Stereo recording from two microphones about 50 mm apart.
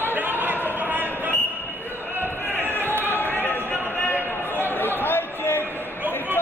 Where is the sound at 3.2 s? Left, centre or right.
Left.